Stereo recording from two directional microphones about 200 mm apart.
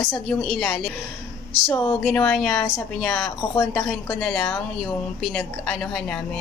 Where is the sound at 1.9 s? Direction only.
5° left (ahead or behind).